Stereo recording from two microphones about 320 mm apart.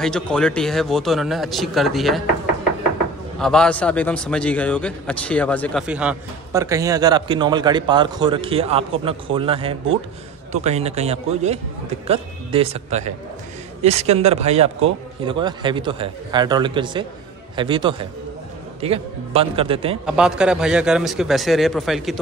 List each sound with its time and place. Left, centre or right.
0.0 s a man's voice: centre
3.3 s a man's voice: centre
20.1 s a man's voice: centre